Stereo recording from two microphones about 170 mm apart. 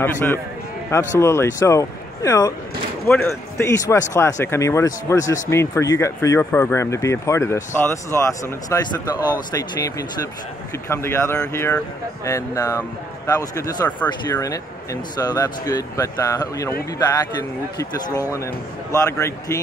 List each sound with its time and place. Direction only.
0.0 s speech: 10° left (ahead or behind)